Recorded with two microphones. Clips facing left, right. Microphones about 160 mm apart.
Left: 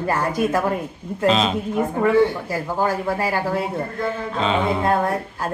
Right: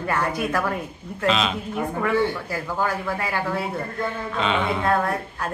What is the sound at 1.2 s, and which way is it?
Speech, 35° left (ahead or behind).